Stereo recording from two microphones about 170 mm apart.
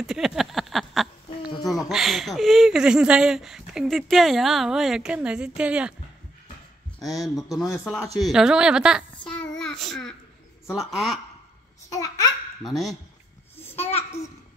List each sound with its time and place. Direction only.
0.0 s a sound: centre (ahead or behind)
1.7 s speech: centre (ahead or behind)
7.2 s speech: centre (ahead or behind)
9.4 s child singing: 5° left (ahead or behind)
10.7 s speech: centre (ahead or behind)
11.9 s a child's voice: 20° left (ahead or behind)
12.6 s speech: centre (ahead or behind)
13.7 s a child's voice: 35° left (ahead or behind)